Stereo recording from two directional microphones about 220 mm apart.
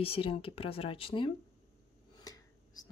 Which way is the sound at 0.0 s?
25° left (ahead or behind).